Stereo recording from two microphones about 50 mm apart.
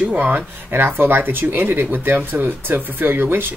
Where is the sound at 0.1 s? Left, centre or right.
Right.